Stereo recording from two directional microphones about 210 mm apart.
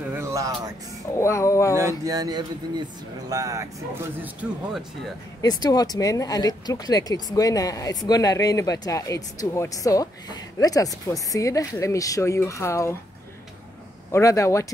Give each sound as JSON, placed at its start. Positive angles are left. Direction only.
{"t": 0.1, "sound": "music", "side_deg": -15}
{"t": 1.1, "sound": "speech", "side_deg": 15}
{"t": 1.8, "sound": "speech", "side_deg": -15}
{"t": 5.4, "sound": "speech", "side_deg": 20}
{"t": 14.1, "sound": "speech", "side_deg": 15}